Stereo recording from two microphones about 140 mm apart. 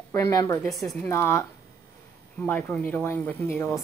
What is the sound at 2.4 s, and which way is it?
Speech, 15° left (ahead or behind).